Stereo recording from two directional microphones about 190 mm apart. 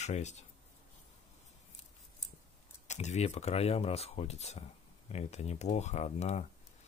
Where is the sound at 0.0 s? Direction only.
35° left (ahead or behind).